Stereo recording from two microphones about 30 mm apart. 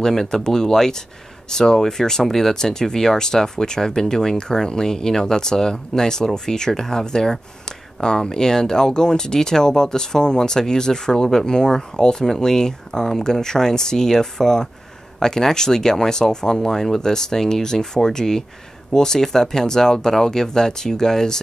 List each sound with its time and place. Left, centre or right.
0.0 s speech: centre